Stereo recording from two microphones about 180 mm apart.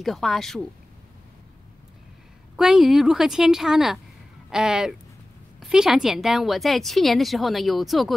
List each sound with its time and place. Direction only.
0.0 s a woman's voice: centre (ahead or behind)
2.5 s a woman's voice: centre (ahead or behind)